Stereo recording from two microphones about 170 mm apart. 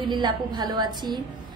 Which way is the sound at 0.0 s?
25° right (ahead or behind).